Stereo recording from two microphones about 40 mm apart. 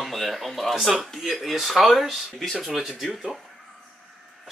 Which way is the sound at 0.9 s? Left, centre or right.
Centre.